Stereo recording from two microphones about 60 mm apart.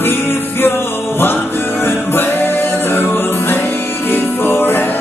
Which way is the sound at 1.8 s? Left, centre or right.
Left.